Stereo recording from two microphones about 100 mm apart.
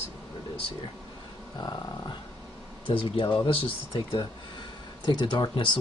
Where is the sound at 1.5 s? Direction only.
40° left (ahead or behind).